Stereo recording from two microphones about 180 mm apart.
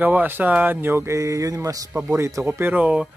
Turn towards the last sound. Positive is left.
turn(degrees=-5)  # may be behind; listen again after turning